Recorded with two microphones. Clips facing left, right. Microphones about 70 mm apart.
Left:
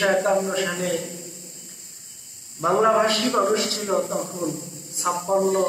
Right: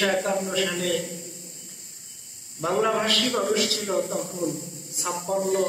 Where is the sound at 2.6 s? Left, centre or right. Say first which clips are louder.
Left 5 dB; left.